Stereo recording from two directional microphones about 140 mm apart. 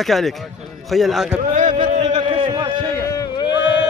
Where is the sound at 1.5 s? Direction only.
65° right (ahead or behind).